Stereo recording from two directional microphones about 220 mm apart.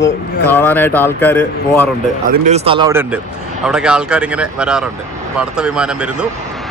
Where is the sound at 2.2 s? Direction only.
30° right (ahead or behind).